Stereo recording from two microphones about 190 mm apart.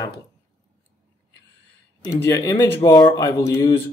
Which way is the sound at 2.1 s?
15° left (ahead or behind).